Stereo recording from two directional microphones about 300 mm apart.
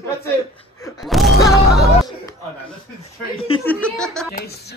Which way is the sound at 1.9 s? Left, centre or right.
Centre.